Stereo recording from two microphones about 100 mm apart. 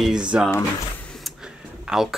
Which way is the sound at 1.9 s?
5° right (ahead or behind).